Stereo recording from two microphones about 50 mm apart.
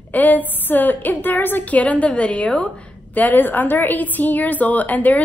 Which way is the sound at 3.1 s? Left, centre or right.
Left.